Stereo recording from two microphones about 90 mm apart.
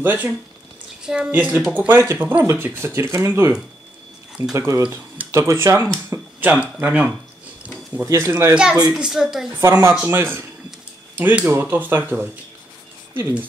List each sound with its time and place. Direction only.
0.0 s speech: 25° right (ahead or behind)
1.0 s speech: 10° right (ahead or behind)
1.3 s speech: 20° right (ahead or behind)
4.6 s speech: 35° right (ahead or behind)
6.4 s speech: 20° right (ahead or behind)
8.0 s speech: 30° right (ahead or behind)
8.9 s a woman's voice: 5° right (ahead or behind)
9.6 s speech: 30° right (ahead or behind)